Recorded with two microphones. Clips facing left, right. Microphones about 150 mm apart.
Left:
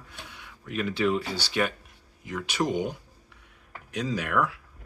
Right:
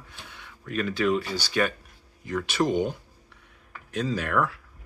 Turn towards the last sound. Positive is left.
turn(degrees=10)  # may be behind; listen again after turning